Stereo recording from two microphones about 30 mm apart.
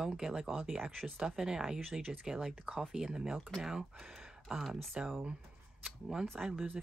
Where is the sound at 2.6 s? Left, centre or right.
Right.